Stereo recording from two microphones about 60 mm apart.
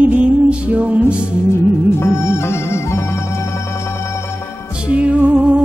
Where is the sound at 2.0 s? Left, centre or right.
Left.